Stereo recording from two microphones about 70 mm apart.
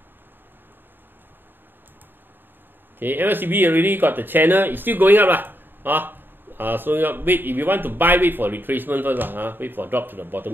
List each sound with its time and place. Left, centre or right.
3.0 s speech: right